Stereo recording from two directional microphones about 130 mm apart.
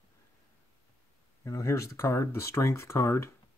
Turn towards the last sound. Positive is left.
turn(degrees=20)  # may be behind; listen again after turning